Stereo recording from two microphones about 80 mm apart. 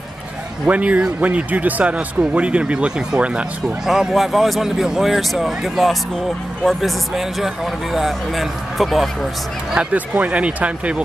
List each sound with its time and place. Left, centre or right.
0.7 s speech: centre
9.8 s speech: centre